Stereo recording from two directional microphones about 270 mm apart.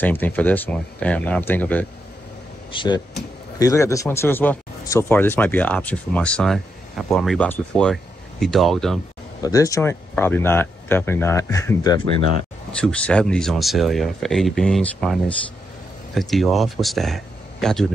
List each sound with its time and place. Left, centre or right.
0.0 s speech: centre
2.7 s speech: centre
9.4 s speech: centre